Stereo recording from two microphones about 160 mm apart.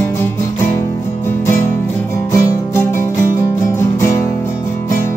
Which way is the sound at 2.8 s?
15° left (ahead or behind).